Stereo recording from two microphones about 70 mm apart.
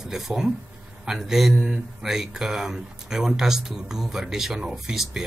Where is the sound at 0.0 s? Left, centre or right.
Centre.